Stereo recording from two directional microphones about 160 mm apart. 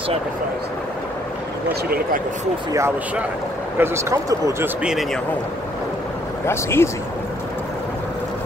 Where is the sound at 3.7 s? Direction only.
15° right (ahead or behind).